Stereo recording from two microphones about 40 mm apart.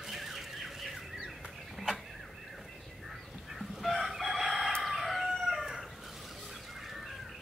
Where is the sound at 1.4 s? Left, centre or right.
Centre.